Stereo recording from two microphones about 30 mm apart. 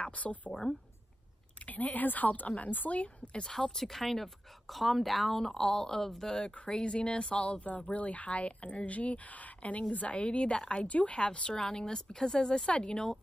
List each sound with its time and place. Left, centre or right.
0.0 s speech: left
1.7 s speech: left
3.4 s speech: centre
5.3 s speech: centre
6.7 s speech: left
10.9 s speech: left
11.1 s speech: left
12.6 s speech: left